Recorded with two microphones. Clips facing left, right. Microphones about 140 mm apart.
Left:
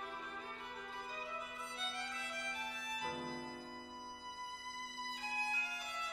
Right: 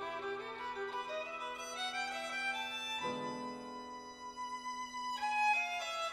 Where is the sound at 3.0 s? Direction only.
30° right (ahead or behind).